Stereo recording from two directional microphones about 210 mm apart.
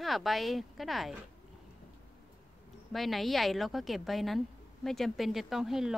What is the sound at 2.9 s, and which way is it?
Speech, centre (ahead or behind).